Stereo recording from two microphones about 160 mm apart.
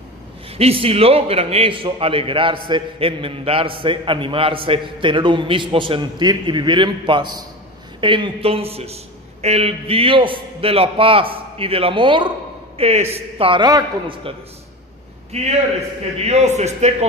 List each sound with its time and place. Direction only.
0.5 s a man's voice: 40° right (ahead or behind)
15.3 s a man's voice: 40° right (ahead or behind)